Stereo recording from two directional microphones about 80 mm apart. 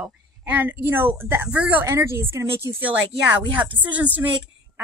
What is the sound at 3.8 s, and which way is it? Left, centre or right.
Speech, centre.